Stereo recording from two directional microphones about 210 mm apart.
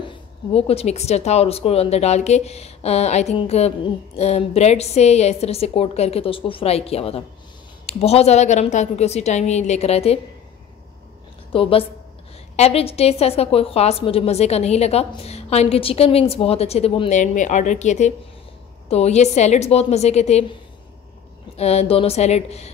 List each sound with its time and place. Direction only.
0.0 s a woman's voice: 25° left (ahead or behind)
11.5 s a woman's voice: 25° left (ahead or behind)
21.5 s speech: 30° left (ahead or behind)